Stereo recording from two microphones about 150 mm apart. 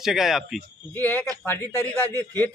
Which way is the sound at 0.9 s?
10° left (ahead or behind).